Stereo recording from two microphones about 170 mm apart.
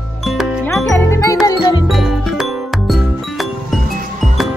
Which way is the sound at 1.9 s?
Centre (ahead or behind).